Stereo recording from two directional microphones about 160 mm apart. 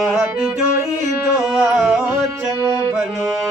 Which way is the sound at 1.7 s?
Centre (ahead or behind).